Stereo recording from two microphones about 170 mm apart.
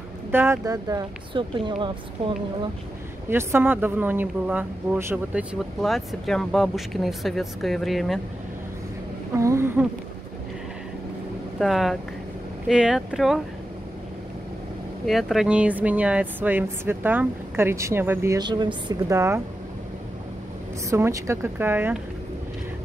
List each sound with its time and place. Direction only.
0.3 s speech: 15° right (ahead or behind); by 1.9 s 30° right (ahead or behind)
3.3 s speech: 15° right (ahead or behind)
9.3 s speech: 15° right (ahead or behind)
11.6 s speech: centre (ahead or behind)
15.0 s speech: centre (ahead or behind)
20.9 s speech: 15° right (ahead or behind)